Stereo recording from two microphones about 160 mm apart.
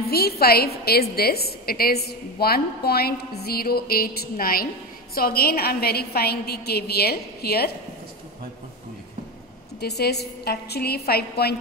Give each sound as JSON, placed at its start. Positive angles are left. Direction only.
{"t": 0.1, "sound": "a woman's voice", "side_deg": 75}
{"t": 9.8, "sound": "a woman's voice", "side_deg": 90}